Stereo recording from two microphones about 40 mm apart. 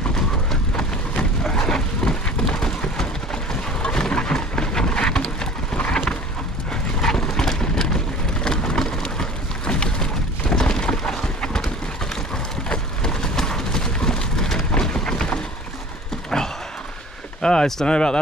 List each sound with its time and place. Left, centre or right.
1.4 s vehicle: centre
3.8 s rain: left
6.7 s horse: centre
8.5 s a sound: centre
17.8 s speech: left